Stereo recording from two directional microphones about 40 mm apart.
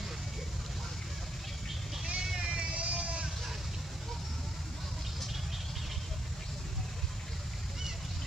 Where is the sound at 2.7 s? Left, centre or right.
Right.